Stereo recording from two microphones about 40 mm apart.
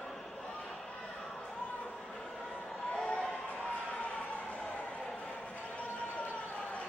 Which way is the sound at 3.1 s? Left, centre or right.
Left.